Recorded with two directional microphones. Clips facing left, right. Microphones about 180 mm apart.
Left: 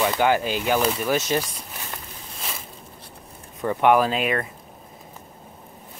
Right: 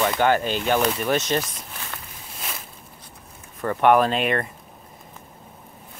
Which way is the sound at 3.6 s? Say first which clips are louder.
Right 1 dB; 10° left (ahead or behind).